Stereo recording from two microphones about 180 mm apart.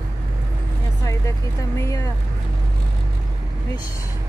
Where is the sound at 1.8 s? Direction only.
20° left (ahead or behind).